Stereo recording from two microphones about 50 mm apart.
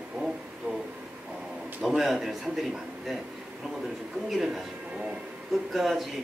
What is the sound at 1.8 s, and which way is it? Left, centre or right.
A man's voice, centre.